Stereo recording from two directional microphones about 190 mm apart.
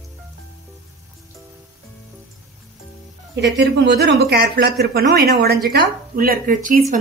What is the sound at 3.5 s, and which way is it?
Speech, 65° right (ahead or behind).